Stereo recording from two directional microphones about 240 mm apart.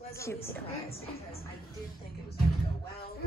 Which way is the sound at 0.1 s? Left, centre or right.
Centre.